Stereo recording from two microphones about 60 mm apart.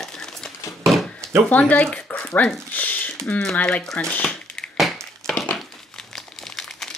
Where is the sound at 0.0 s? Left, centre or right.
Centre.